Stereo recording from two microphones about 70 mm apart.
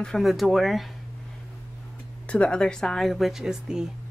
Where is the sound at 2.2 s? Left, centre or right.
Centre.